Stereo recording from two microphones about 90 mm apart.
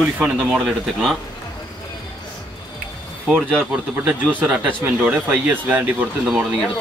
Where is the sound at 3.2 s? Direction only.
15° right (ahead or behind).